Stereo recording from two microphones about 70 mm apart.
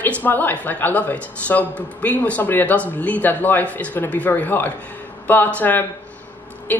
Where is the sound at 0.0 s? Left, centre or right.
Left.